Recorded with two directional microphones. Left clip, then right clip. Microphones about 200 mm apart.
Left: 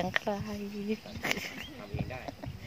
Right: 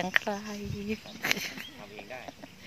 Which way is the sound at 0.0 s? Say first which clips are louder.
Right 3 dB; centre (ahead or behind).